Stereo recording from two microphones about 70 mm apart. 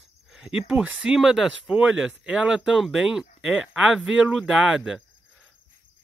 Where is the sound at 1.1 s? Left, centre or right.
Centre.